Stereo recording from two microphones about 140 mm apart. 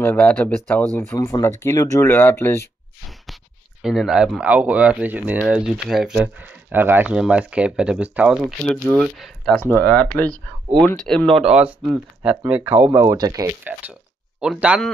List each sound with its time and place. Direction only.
0.0 s speech: 10° left (ahead or behind)
1.1 s speech: 25° left (ahead or behind)
3.8 s speech: centre (ahead or behind); by 13.5 s 25° right (ahead or behind)
13.7 s speech: 10° right (ahead or behind)